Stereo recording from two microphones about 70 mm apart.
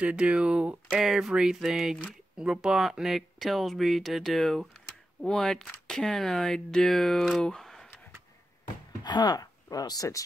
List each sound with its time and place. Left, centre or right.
0.0 s speech: centre
0.8 s speech: centre
7.4 s a sound: centre
9.0 s speech: left